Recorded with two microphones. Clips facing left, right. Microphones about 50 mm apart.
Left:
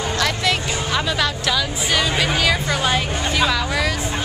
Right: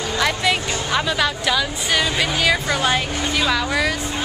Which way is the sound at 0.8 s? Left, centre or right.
Centre.